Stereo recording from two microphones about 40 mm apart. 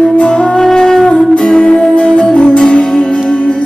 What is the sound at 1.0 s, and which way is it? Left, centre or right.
Music, left.